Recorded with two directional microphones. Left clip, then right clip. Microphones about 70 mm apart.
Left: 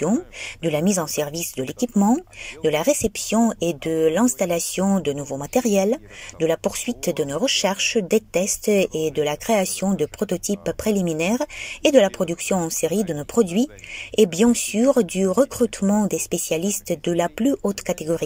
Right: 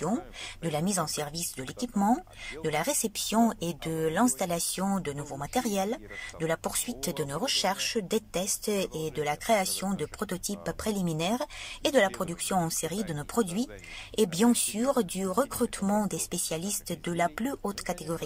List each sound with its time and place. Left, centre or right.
0.7 s speech: left
11.9 s speech: left
16.1 s speech: left
17.8 s speech: left